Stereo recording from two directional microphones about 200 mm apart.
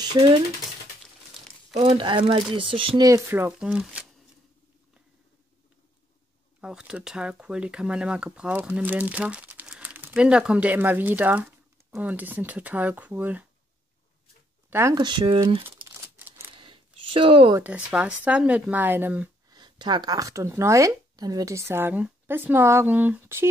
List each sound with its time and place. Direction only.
0.0 s speech: 20° right (ahead or behind)
1.7 s speech: 30° right (ahead or behind)
3.3 s speech: 10° right (ahead or behind)
6.6 s speech: 5° right (ahead or behind)
14.7 s speech: 15° right (ahead or behind)
15.6 s crumpling: 10° right (ahead or behind)
16.5 s a sound: 25° right (ahead or behind)
17.6 s speech: 5° right (ahead or behind)
19.5 s speech: 20° right (ahead or behind)